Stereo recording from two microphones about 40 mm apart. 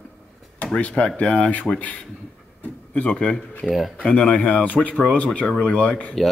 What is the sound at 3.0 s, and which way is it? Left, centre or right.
Speech, left.